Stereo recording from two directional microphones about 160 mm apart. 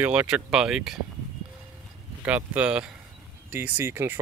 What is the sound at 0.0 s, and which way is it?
Speech, 10° right (ahead or behind).